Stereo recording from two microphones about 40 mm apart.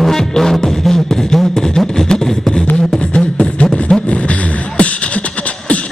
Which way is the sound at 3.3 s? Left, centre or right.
Left.